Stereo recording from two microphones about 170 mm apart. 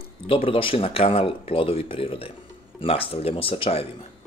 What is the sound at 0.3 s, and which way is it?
Speech, 30° left (ahead or behind).